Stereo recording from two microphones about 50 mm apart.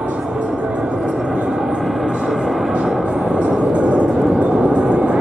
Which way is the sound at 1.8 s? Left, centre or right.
Centre.